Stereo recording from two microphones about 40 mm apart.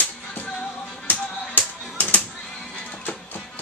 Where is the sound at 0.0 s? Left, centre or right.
Left.